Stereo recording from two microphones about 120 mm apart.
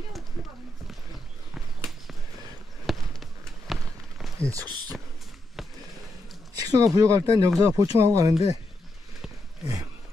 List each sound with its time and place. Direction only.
1.8 s horse: centre (ahead or behind)
2.9 s a sound: centre (ahead or behind)
4.4 s speech: 25° right (ahead or behind)
6.6 s speech: 30° right (ahead or behind)